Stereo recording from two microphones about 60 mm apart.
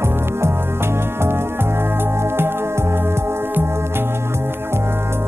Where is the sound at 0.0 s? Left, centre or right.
Right.